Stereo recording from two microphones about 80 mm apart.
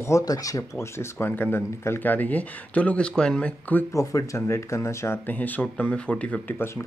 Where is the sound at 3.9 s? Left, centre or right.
Left.